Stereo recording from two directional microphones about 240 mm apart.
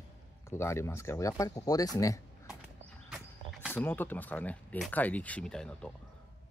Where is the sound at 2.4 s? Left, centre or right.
Centre.